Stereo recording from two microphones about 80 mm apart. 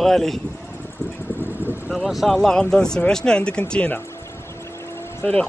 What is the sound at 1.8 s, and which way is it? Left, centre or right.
Speech, centre.